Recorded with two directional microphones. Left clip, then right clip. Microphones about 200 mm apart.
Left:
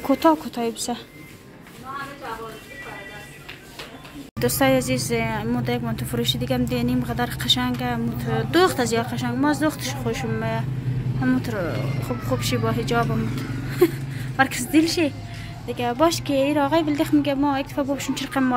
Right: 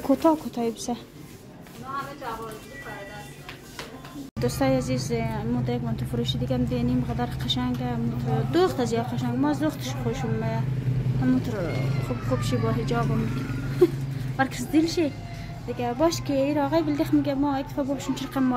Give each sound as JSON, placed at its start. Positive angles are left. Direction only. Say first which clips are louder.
{"t": 0.1, "sound": "a woman's voice", "louder": "left 3 dB", "side_deg": 0}
{"t": 4.4, "sound": "a woman's voice", "louder": "left 5 dB", "side_deg": 5}